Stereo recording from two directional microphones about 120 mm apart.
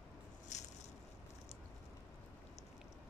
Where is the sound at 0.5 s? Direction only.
85° left.